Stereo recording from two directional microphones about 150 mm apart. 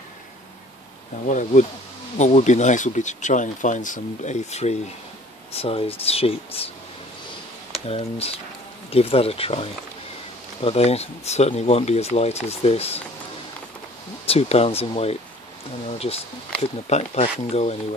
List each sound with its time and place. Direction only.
1.2 s speech: 55° left (ahead or behind); by 6.7 s 40° left (ahead or behind)
7.8 s speech: 40° left (ahead or behind)
14.2 s speech: 40° left (ahead or behind)
16.9 s speech: 45° left (ahead or behind)